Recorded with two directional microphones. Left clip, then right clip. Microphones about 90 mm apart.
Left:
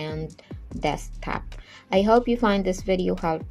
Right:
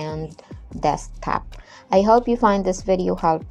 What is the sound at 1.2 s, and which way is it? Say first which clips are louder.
Speech: right 8 dB; 25° right (ahead or behind).